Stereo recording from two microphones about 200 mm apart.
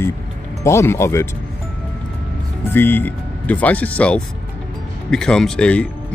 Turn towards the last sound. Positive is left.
turn(degrees=5)  # may be behind; listen again after turning